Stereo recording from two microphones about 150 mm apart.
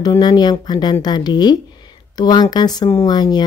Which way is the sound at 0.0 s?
25° left (ahead or behind).